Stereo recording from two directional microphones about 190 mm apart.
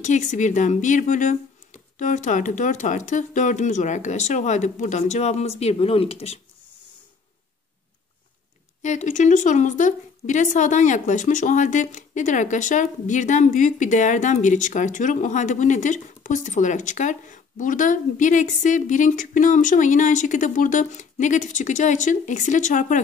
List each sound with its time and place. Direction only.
0.0 s a woman's voice: 40° left (ahead or behind)
8.8 s a woman's voice: 40° left (ahead or behind)